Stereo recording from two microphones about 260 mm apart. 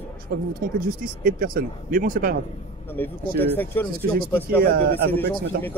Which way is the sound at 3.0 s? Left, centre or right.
Centre.